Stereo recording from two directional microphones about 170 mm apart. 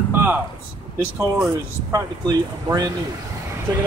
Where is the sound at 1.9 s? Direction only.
20° right (ahead or behind).